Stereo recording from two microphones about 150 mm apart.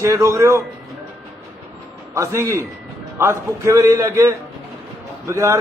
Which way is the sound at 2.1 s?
20° right (ahead or behind).